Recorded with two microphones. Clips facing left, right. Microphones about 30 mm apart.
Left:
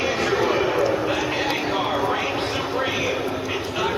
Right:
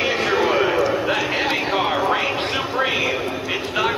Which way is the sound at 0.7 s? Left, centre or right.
Centre.